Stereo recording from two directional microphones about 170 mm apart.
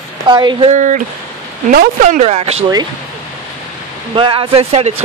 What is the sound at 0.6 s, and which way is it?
A man's voice, 45° right (ahead or behind).